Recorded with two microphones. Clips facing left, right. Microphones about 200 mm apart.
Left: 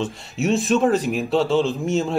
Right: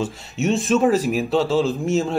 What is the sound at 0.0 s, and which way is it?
Speech, centre (ahead or behind).